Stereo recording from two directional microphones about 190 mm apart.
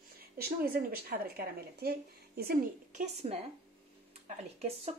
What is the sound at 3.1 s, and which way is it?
A woman's voice, 30° right (ahead or behind).